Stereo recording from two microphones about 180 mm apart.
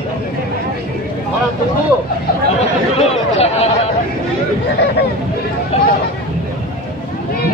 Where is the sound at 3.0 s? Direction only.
35° left (ahead or behind).